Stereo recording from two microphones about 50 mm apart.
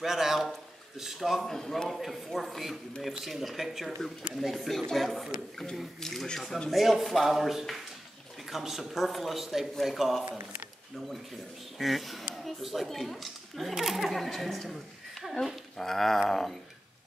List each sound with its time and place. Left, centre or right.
0.0 s a man's voice: centre
1.5 s a woman's voice: centre
5.9 s speech: centre
6.7 s a woman's voice: centre
10.2 s speech: right
11.8 s a woman's voice: centre